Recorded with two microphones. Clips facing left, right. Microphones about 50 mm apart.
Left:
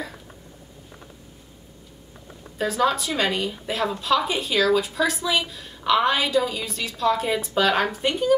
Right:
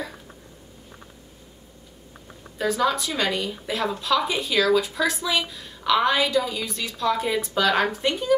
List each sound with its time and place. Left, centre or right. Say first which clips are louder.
2.8 s a woman's voice: left 3 dB; centre